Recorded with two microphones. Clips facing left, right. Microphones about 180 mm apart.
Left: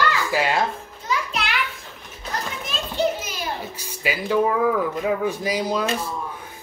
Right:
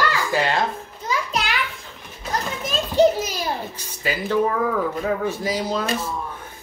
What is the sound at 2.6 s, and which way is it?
Children playing, 40° right (ahead or behind).